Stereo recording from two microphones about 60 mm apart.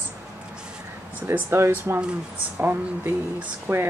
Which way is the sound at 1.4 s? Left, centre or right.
Right.